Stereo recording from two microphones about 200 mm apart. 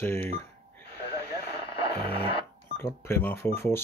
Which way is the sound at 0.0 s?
10° left (ahead or behind).